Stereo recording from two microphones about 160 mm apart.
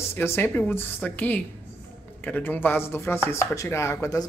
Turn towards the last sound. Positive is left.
turn(degrees=20)  # may be behind; listen again after turning